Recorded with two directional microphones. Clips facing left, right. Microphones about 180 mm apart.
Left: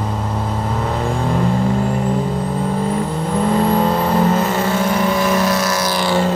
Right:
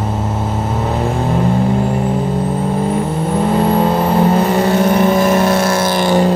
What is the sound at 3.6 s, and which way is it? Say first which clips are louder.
Vehicle: right 2 dB; 5° right (ahead or behind).